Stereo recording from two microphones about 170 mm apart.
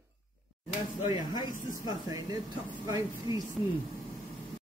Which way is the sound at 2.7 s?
20° right (ahead or behind).